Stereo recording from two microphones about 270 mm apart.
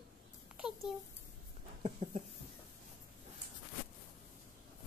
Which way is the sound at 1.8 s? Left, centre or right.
Right.